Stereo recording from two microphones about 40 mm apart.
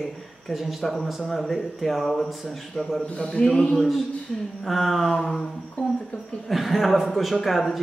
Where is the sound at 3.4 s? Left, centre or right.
Centre.